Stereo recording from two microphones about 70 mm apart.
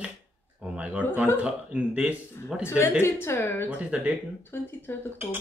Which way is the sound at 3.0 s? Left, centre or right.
Left.